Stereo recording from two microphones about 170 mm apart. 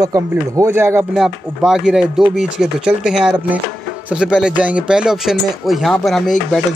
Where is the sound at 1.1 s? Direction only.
5° right (ahead or behind).